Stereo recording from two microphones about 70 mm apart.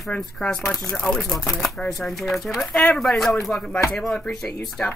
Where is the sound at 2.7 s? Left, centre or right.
Centre.